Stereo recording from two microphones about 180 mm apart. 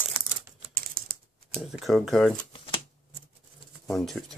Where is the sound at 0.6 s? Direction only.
50° right (ahead or behind).